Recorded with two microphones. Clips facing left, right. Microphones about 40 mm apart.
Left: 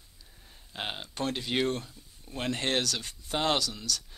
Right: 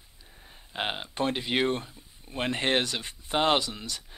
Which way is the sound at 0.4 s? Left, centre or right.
Right.